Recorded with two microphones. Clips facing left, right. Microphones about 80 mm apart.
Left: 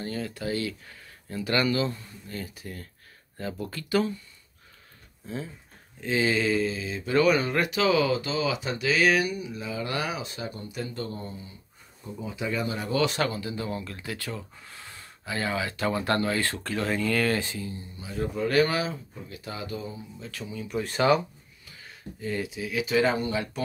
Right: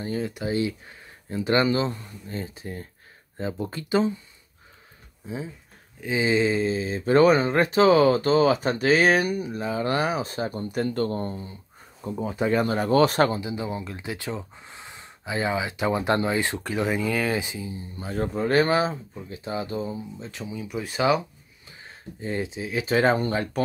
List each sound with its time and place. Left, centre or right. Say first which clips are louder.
0.0 s speech: right 4 dB; centre
5.2 s speech: right 2 dB; centre; by 13.4 s right
13.4 s speech: right 2 dB; centre
17.9 s speech: right 4 dB; right
18.3 s speech: right 3 dB; right; by 21.2 s centre
21.6 s speech: right 1 dB; right